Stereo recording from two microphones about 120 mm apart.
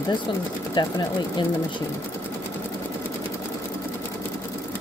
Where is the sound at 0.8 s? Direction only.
40° left (ahead or behind).